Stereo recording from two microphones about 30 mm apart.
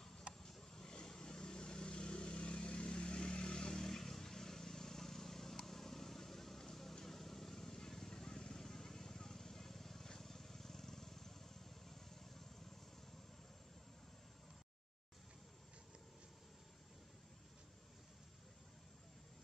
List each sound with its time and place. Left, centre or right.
0.4 s vehicle: centre
3.8 s vehicle: centre